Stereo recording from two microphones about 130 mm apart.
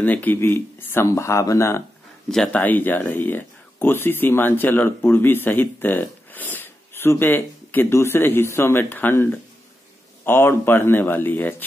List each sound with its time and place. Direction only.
0.0 s speech: 15° left (ahead or behind)
2.3 s speech: 10° left (ahead or behind)